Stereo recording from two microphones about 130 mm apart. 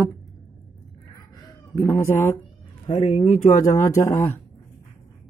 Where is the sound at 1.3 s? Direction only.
30° left (ahead or behind).